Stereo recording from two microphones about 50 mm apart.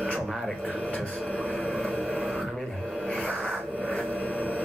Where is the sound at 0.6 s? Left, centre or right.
Centre.